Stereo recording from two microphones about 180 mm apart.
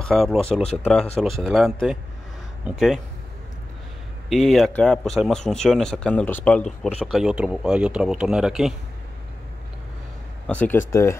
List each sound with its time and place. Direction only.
0.0 s speech: centre (ahead or behind)
0.5 s speech: 35° left (ahead or behind)
1.1 s speech: centre (ahead or behind)
4.3 s speech: centre (ahead or behind)
10.4 s speech: 10° left (ahead or behind)